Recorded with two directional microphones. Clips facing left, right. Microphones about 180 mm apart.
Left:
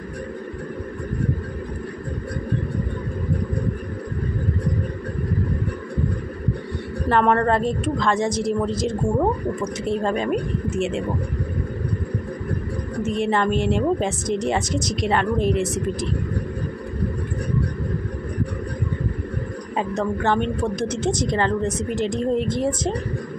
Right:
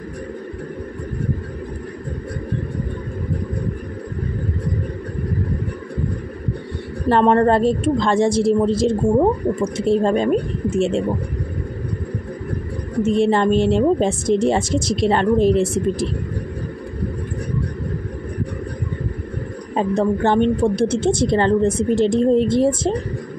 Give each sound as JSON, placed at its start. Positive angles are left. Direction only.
{"t": 7.1, "sound": "a woman's voice", "side_deg": -30}
{"t": 13.1, "sound": "a woman's voice", "side_deg": -30}
{"t": 19.7, "sound": "a woman's voice", "side_deg": -30}